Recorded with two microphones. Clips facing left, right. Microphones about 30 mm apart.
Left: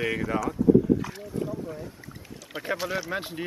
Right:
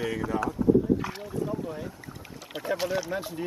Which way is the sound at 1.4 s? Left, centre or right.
Right.